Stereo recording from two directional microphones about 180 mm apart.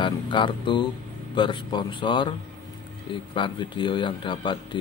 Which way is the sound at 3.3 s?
25° left (ahead or behind).